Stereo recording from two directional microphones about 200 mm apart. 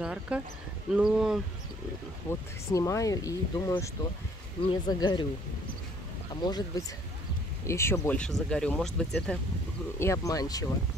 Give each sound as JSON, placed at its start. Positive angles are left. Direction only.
{"t": 0.0, "sound": "a sound", "side_deg": -5}
{"t": 0.9, "sound": "speech", "side_deg": -5}
{"t": 2.3, "sound": "speech", "side_deg": 10}
{"t": 6.3, "sound": "speech", "side_deg": 20}
{"t": 9.9, "sound": "speech", "side_deg": 15}